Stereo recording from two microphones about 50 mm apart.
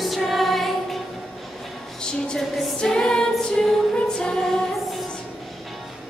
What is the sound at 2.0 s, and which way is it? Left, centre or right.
Music, centre.